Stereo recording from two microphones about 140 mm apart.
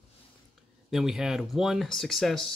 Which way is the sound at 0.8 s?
5° right (ahead or behind).